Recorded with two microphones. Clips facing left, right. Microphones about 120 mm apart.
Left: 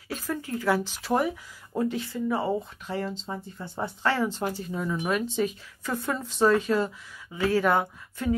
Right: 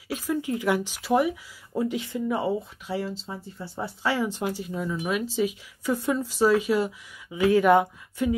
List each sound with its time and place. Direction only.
0.1 s speech: 15° right (ahead or behind)